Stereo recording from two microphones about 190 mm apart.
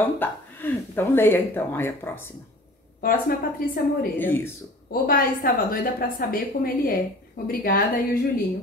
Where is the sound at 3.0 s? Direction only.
50° left (ahead or behind).